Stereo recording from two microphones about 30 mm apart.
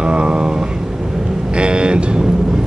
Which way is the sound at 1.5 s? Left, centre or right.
Right.